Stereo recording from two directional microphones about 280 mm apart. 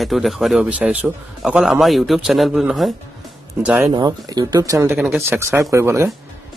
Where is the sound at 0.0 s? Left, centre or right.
Centre.